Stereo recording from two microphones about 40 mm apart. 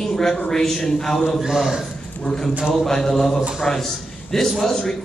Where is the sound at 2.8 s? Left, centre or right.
Centre.